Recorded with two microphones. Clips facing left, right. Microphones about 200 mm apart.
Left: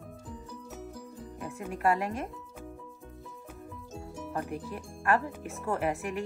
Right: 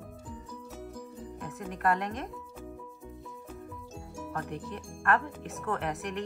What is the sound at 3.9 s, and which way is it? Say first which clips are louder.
Music: left 2 dB; centre (ahead or behind).